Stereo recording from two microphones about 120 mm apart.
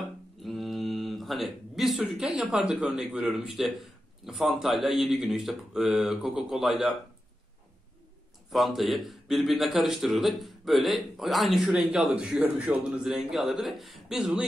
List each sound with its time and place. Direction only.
0.4 s a man's voice: centre (ahead or behind)
8.5 s a man's voice: centre (ahead or behind)